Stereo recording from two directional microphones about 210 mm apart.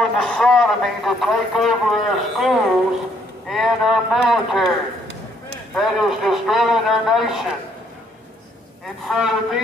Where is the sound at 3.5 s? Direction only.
Centre (ahead or behind).